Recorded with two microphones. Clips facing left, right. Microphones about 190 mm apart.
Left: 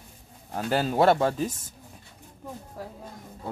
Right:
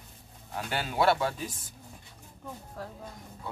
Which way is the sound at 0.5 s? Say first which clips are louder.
Left 6 dB; 40° left (ahead or behind).